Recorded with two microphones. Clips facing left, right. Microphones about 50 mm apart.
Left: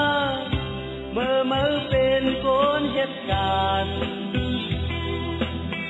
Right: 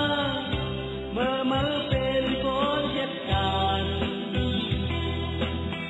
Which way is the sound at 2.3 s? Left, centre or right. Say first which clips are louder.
Left 5 dB; centre.